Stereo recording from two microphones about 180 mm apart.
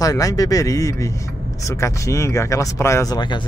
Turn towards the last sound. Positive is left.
turn(degrees=20)  # may be behind; listen again after turning